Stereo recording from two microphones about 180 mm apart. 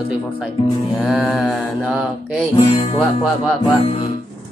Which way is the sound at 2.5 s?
25° left (ahead or behind).